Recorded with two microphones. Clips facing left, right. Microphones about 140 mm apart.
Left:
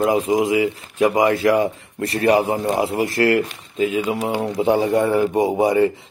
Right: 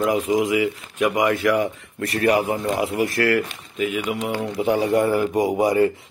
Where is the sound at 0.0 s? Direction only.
30° left (ahead or behind).